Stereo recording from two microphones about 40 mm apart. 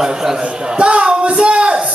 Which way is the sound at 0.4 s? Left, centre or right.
Right.